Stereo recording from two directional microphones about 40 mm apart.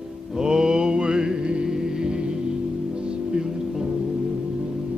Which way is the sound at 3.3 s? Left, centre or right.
Centre.